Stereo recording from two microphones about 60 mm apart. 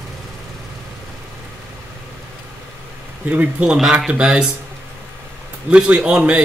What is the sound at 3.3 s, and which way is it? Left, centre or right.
Speech, right.